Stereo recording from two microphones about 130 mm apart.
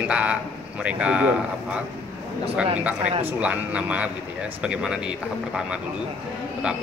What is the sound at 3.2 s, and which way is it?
Speech, 10° right (ahead or behind).